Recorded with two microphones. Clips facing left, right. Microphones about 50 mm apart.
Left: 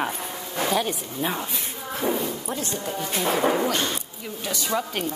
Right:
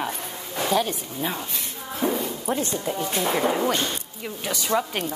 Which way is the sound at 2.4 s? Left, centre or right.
Right.